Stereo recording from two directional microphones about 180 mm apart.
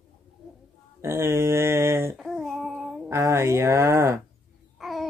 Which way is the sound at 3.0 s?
15° right (ahead or behind).